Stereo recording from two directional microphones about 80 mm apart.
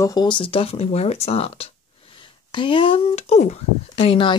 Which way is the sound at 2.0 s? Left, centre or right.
Left.